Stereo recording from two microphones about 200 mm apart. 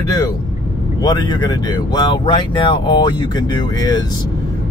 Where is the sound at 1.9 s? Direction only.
25° left (ahead or behind).